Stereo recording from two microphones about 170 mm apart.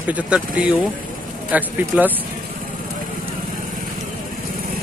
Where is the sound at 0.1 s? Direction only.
5° right (ahead or behind).